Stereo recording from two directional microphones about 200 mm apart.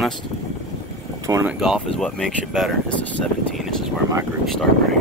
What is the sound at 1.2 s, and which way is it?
Speech, 15° right (ahead or behind).